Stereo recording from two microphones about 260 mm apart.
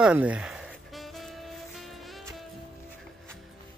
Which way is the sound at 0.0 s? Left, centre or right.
Centre.